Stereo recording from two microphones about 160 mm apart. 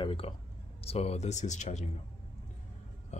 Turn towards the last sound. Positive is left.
turn(degrees=45)  # may be behind; listen again after turning